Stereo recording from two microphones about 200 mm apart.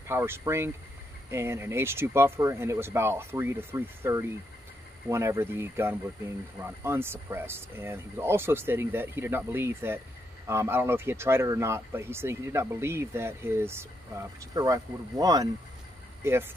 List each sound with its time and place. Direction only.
0.1 s speech: 10° right (ahead or behind)